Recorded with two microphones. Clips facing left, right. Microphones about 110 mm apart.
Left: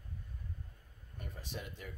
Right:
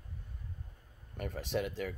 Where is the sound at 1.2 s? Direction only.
90° right.